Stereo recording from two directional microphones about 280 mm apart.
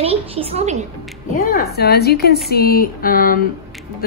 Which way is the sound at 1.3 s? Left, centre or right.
Left.